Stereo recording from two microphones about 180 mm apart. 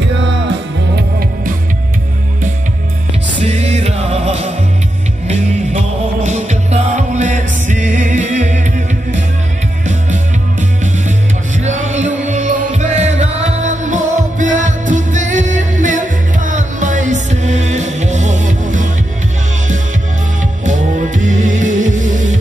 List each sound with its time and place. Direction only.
3.4 s music: 40° right (ahead or behind)
10.8 s music: 45° right (ahead or behind)
20.6 s music: 45° right (ahead or behind)